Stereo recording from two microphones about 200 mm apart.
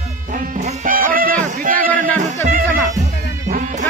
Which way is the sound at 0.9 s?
45° right (ahead or behind).